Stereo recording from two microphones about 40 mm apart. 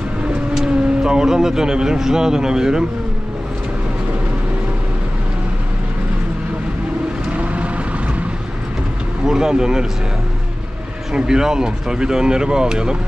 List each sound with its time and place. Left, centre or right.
0.6 s speech: centre
7.3 s vehicle: right
9.3 s speech: centre
11.1 s speech: centre